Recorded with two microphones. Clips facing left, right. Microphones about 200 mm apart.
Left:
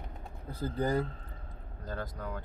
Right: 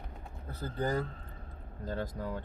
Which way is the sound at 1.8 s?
25° right (ahead or behind).